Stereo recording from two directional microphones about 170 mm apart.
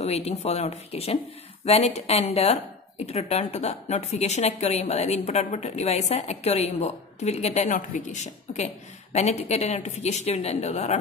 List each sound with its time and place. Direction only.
0.0 s a woman's voice: 40° left (ahead or behind)